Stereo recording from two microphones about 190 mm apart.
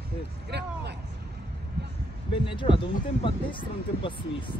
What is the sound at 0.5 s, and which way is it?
Speech, 60° right (ahead or behind).